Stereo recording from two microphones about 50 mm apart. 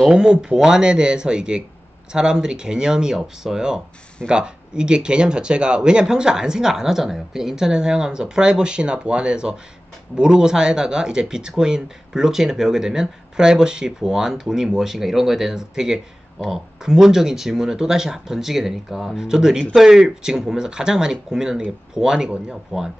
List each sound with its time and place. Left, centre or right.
0.1 s speech: centre